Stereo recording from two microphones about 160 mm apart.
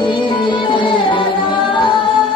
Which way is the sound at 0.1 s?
30° left (ahead or behind).